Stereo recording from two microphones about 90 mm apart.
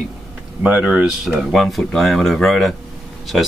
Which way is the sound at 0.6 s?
10° right (ahead or behind).